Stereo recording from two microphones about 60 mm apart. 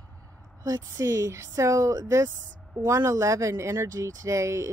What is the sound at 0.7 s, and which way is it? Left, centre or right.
Speech, right.